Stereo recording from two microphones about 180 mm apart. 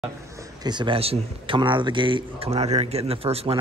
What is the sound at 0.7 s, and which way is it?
Speech, 25° right (ahead or behind).